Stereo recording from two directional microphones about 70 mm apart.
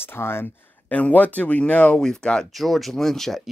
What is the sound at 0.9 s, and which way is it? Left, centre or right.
Speech, left.